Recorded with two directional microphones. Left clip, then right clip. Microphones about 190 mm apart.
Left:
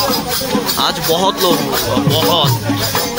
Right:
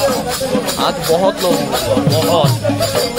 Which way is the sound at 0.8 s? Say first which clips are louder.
Right 1 dB; centre (ahead or behind).